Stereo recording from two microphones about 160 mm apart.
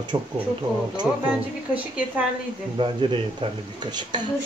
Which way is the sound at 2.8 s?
30° right (ahead or behind).